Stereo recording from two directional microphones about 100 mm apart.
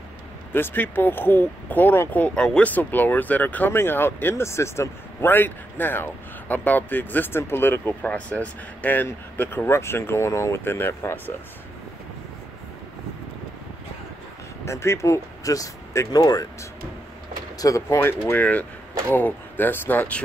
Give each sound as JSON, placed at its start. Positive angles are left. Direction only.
{"t": 0.5, "sound": "speech", "side_deg": 20}
{"t": 14.6, "sound": "speech", "side_deg": 25}
{"t": 17.6, "sound": "speech", "side_deg": 35}